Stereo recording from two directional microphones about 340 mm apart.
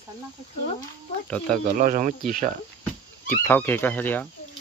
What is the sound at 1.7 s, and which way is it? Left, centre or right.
Speech, right.